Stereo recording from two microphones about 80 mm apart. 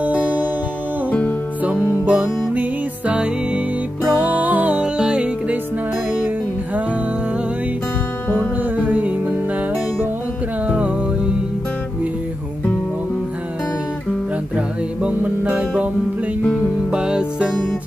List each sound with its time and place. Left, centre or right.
0.0 s music: centre
1.6 s music: centre
8.4 s music: right
10.7 s music: centre
15.0 s music: centre
16.9 s music: centre